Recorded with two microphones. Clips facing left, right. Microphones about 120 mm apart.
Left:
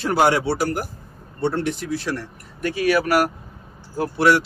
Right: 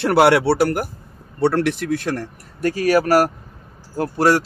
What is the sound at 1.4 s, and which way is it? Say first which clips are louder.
Speech: right 5 dB; 90° right.